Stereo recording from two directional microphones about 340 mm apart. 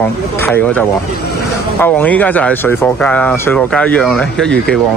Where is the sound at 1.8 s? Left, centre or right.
Centre.